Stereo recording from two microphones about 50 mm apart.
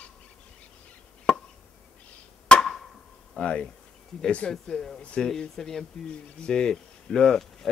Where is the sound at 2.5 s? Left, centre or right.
Centre.